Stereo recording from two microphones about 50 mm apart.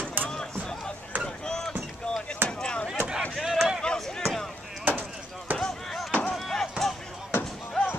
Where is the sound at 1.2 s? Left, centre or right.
Centre.